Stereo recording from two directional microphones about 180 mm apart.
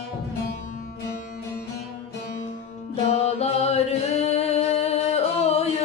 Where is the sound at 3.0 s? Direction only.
35° left (ahead or behind).